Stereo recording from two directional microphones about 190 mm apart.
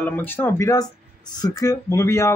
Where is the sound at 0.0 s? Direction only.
10° left (ahead or behind).